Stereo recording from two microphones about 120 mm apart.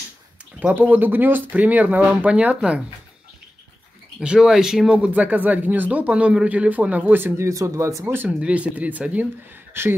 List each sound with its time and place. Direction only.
0.6 s speech: 15° right (ahead or behind)
4.2 s speech: 5° right (ahead or behind); by 8.0 s 25° right (ahead or behind)
8.1 s speech: 15° right (ahead or behind)